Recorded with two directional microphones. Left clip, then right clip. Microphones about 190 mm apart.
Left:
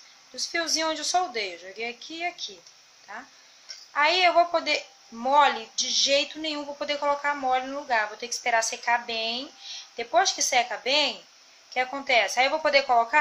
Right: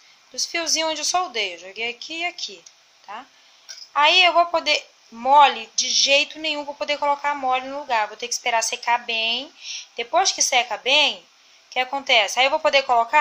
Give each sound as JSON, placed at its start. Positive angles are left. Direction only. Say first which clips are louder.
{"t": 0.4, "sound": "a woman's voice", "louder": "right 4 dB", "side_deg": -30}